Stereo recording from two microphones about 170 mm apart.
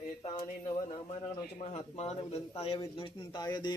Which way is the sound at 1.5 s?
40° left (ahead or behind).